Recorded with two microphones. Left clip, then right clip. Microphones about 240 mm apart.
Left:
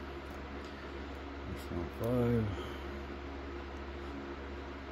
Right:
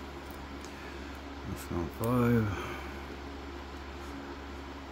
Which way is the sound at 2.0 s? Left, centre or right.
Right.